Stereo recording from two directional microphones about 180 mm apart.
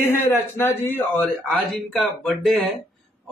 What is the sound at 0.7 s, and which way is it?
Speech, 10° left (ahead or behind).